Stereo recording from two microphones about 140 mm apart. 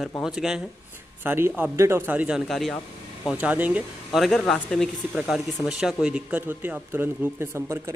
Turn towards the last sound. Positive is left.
turn(degrees=-20)  # may be behind; listen again after turning